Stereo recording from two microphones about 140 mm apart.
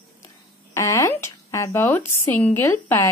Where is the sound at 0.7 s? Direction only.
20° left (ahead or behind).